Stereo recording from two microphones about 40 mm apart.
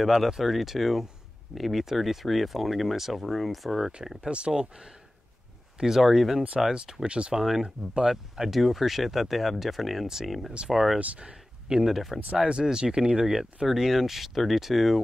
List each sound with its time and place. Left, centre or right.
0.0 s speech: centre
4.3 s speech: right
7.1 s speech: right
8.1 s speech: centre
11.0 s speech: right
11.7 s speech: centre
12.6 s speech: centre
13.7 s speech: centre